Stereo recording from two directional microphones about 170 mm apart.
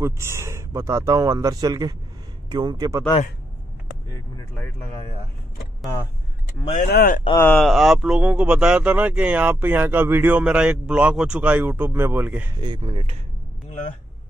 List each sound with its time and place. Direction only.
0.0 s speech: 15° right (ahead or behind)
6.9 s speech: 60° left (ahead or behind)
7.3 s speech: 10° left (ahead or behind)
7.6 s speech: centre (ahead or behind)
12.5 s speech: 25° right (ahead or behind)